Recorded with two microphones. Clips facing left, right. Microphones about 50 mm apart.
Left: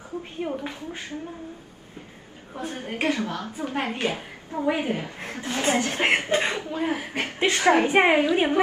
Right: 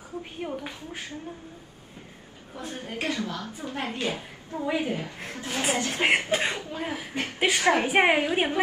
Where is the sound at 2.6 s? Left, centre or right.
Left.